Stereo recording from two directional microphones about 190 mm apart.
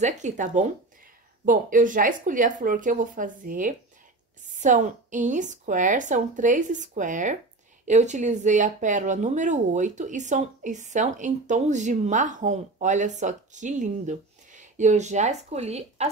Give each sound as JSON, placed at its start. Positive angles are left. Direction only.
{"t": 0.0, "sound": "speech", "side_deg": -40}